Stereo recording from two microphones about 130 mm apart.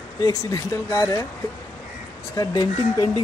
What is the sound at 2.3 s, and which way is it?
Speech, 30° left (ahead or behind).